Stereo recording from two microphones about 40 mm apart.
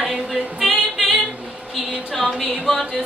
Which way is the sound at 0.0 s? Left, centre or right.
Centre.